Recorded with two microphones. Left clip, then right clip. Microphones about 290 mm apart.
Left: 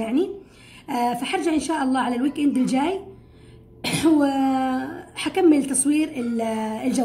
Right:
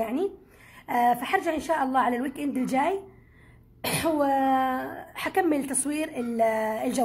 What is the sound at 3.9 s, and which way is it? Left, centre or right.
A woman's voice, right.